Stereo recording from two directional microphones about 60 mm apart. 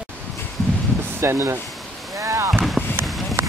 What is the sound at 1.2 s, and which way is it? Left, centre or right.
Speech, right.